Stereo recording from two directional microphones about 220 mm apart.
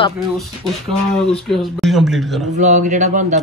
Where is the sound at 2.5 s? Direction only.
35° right (ahead or behind).